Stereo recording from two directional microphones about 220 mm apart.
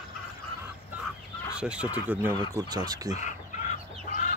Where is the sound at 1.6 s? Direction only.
5° right (ahead or behind).